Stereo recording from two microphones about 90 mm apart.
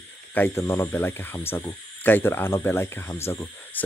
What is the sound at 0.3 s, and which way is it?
Speech, 25° left (ahead or behind).